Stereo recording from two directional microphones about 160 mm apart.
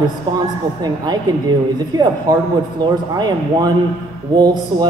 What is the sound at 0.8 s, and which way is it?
A man's voice, 25° right (ahead or behind).